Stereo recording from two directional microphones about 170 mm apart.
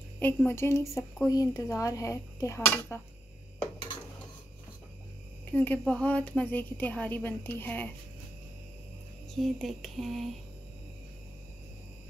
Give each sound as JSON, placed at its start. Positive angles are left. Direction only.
{"t": 0.2, "sound": "a woman's voice", "side_deg": 10}
{"t": 5.5, "sound": "a woman's voice", "side_deg": 10}
{"t": 9.3, "sound": "speech", "side_deg": 0}